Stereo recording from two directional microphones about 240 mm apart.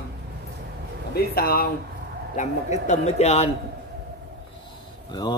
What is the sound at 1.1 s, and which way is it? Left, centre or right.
A man's voice, left.